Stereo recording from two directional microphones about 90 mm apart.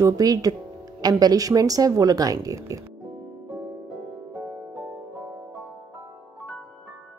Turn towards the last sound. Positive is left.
turn(degrees=-15)  # may be behind; listen again after turning